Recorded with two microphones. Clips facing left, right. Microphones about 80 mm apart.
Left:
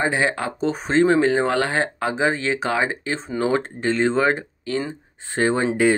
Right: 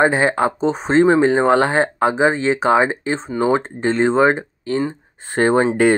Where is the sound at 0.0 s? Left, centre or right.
Right.